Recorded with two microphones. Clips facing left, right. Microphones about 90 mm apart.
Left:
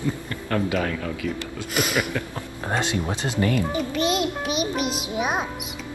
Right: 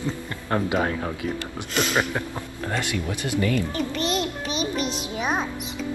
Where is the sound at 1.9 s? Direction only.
20° right (ahead or behind).